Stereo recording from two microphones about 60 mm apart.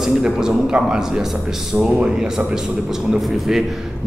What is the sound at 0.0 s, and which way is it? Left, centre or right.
A man's voice, centre.